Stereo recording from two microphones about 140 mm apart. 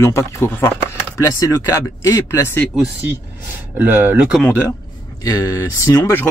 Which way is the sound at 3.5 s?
15° right (ahead or behind).